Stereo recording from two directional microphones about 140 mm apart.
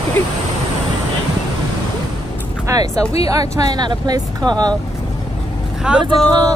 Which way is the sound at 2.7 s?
25° right (ahead or behind).